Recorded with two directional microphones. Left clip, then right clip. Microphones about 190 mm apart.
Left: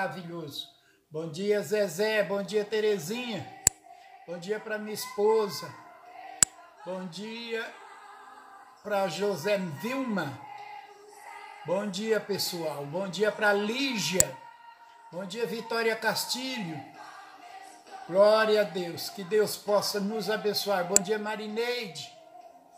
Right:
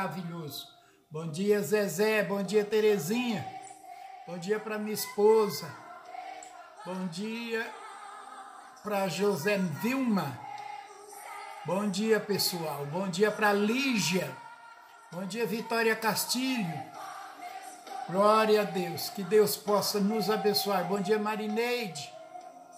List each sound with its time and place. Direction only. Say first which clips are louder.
0.0 s speech: left 3 dB; centre (ahead or behind)
6.9 s speech: left 1 dB; 5° right (ahead or behind)
8.8 s speech: left 1 dB; 5° right (ahead or behind)
11.6 s speech: left 1 dB; 5° right (ahead or behind)
15.2 s speech: even; 10° right (ahead or behind)
18.1 s speech: left 2 dB; 5° right (ahead or behind)